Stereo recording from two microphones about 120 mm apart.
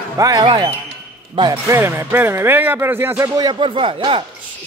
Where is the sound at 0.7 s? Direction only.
55° right (ahead or behind).